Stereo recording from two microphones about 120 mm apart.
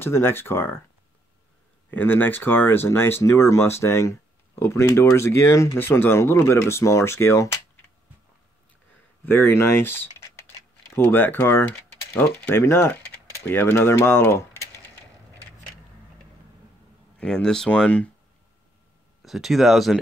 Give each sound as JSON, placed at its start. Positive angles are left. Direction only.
{"t": 0.0, "sound": "speech", "side_deg": 20}
{"t": 1.9, "sound": "speech", "side_deg": 15}
{"t": 9.2, "sound": "speech", "side_deg": 15}
{"t": 17.2, "sound": "speech", "side_deg": 5}
{"t": 19.2, "sound": "speech", "side_deg": 0}